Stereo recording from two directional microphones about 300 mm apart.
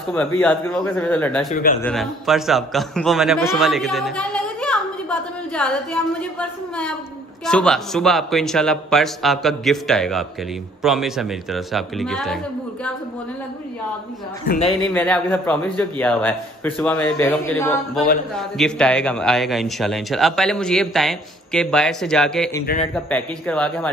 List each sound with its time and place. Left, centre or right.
0.1 s a man's voice: centre
1.5 s speech: left
1.8 s a man's voice: centre
7.4 s a man's voice: centre
14.8 s a man's voice: centre